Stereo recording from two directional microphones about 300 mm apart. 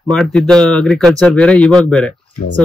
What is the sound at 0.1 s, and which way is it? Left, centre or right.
Speech, centre.